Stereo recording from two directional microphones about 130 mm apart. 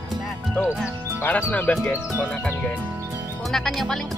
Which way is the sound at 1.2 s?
15° left (ahead or behind).